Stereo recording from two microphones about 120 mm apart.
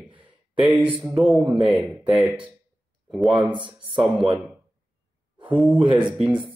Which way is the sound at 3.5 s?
40° right (ahead or behind).